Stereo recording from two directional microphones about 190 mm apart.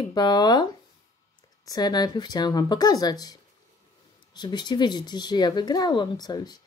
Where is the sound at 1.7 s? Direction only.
20° left (ahead or behind).